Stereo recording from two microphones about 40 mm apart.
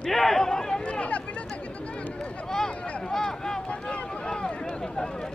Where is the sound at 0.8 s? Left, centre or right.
Left.